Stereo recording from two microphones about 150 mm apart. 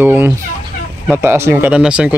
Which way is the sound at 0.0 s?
15° right (ahead or behind).